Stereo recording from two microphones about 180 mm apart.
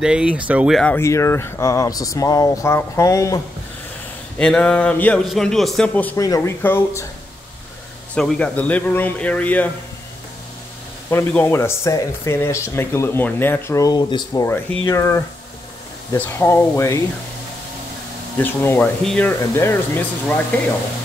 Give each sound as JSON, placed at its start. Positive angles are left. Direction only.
{"t": 0.0, "sound": "speech", "side_deg": -5}
{"t": 0.9, "sound": "speech", "side_deg": 15}
{"t": 4.4, "sound": "speech", "side_deg": 5}
{"t": 8.1, "sound": "speech", "side_deg": 5}
{"t": 11.1, "sound": "speech", "side_deg": 15}
{"t": 18.4, "sound": "speech", "side_deg": 10}